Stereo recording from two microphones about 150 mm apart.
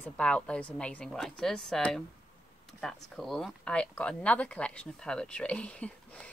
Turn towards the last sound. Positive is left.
turn(degrees=10)  # may be behind; listen again after turning